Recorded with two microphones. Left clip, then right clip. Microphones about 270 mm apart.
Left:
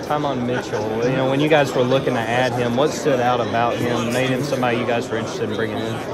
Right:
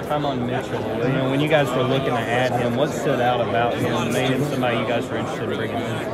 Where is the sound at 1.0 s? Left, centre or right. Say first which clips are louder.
Left 3 dB; left.